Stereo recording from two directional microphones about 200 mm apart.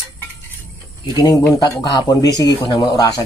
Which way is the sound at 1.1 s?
15° left (ahead or behind).